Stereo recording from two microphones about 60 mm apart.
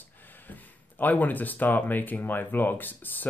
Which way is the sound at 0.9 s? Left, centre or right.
Left.